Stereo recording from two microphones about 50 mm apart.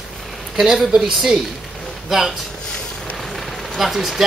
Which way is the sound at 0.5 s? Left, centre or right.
Centre.